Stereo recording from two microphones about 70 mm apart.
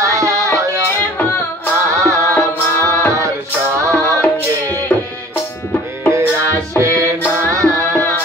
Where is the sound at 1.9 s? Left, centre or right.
Right.